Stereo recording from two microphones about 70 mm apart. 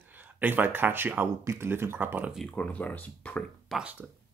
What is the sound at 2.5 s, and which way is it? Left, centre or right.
Speech, left.